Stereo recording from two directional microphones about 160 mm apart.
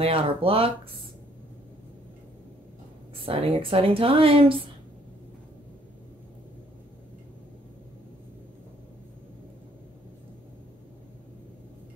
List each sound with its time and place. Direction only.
0.0 s a woman's voice: 35° right (ahead or behind)
3.2 s a woman's voice: 35° right (ahead or behind)